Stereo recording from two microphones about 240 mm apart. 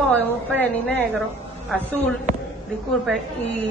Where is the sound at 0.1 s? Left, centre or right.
Centre.